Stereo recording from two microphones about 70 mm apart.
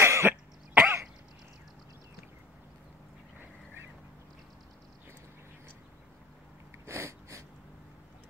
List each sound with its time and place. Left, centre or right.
0.0 s cough: right
0.3 s cough: right
6.9 s a sound: right